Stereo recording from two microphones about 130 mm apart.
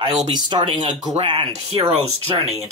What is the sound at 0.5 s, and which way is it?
Speech, 35° right (ahead or behind).